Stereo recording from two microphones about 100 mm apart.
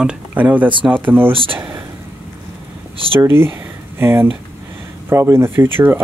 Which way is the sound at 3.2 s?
25° right (ahead or behind).